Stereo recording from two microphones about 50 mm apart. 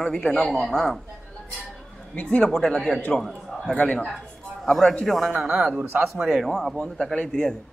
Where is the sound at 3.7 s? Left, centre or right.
Left.